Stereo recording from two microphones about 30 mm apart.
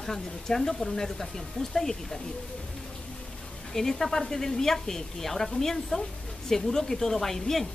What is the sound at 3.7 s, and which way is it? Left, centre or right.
Speech, centre.